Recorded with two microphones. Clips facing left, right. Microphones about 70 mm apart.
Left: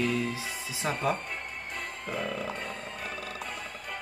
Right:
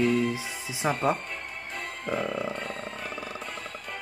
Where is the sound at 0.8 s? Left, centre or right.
Right.